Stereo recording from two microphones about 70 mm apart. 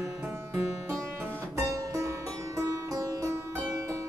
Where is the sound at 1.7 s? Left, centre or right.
Right.